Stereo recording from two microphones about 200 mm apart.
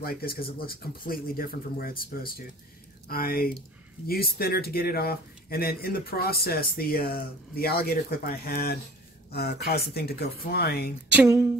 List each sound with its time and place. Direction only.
0.0 s speech: 50° left (ahead or behind)
11.1 s speech: 15° right (ahead or behind)